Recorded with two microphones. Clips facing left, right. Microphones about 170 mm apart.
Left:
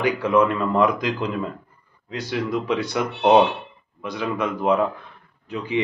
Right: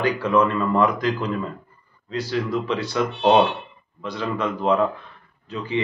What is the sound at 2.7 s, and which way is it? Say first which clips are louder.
Speech: even; 15° left (ahead or behind).